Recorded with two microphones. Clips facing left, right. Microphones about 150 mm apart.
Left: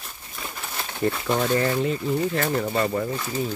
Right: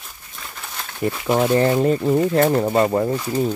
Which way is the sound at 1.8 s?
45° right (ahead or behind).